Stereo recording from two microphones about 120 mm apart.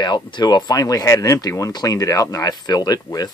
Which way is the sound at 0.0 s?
40° left (ahead or behind).